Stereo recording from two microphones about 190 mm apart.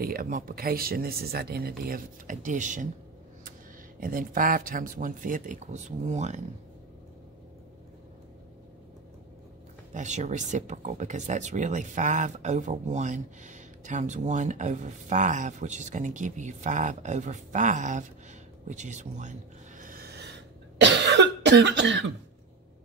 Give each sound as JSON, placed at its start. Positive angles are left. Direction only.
{"t": 0.0, "sound": "speech", "side_deg": -50}
{"t": 4.0, "sound": "speech", "side_deg": -45}
{"t": 9.9, "sound": "speech", "side_deg": -40}
{"t": 19.8, "sound": "cough", "side_deg": -50}